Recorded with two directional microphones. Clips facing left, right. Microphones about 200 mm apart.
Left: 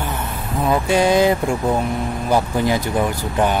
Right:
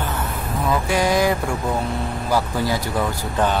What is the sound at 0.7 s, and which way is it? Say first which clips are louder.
Speech: left 4 dB; 25° left (ahead or behind).